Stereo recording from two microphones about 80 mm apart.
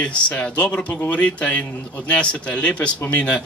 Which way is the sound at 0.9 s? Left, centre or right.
Left.